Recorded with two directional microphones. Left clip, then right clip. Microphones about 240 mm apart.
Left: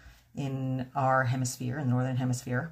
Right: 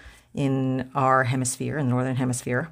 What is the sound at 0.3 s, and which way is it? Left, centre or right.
Speech, right.